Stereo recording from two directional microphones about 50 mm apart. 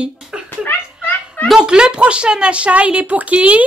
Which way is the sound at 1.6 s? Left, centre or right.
Centre.